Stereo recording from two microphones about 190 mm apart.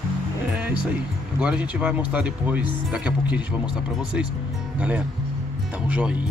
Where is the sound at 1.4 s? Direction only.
5° right (ahead or behind).